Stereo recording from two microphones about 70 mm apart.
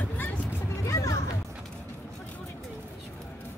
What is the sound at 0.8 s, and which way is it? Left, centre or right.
Music, left.